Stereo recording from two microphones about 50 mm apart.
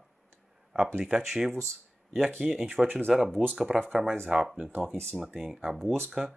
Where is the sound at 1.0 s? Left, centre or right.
Centre.